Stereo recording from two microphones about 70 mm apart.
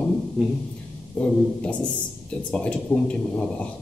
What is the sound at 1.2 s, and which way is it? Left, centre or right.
A man's voice, centre.